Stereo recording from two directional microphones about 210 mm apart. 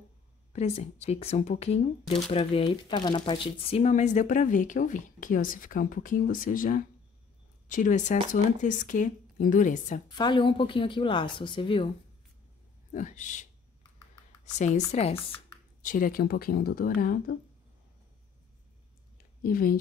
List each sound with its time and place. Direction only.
0.5 s speech: 30° left (ahead or behind)
10.1 s speech: 20° left (ahead or behind)
12.9 s speech: 35° left (ahead or behind)
15.1 s computer keyboard: 10° left (ahead or behind)
15.8 s speech: 40° left (ahead or behind)
19.1 s a sound: 45° left (ahead or behind)